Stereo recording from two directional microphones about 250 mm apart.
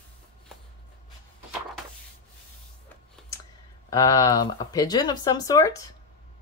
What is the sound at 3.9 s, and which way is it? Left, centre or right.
Speech, centre.